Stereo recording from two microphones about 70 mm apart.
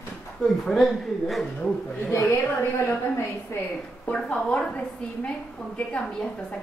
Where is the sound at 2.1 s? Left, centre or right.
Left.